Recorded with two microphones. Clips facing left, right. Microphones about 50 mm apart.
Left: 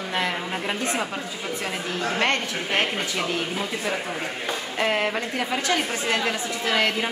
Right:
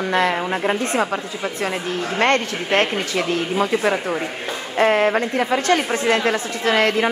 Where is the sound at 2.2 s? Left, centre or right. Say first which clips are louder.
Right 8 dB; right.